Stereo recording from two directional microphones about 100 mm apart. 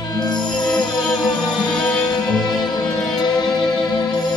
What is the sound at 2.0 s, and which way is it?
Music, 45° left (ahead or behind).